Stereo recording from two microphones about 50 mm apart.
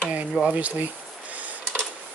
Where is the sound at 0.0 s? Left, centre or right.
Right.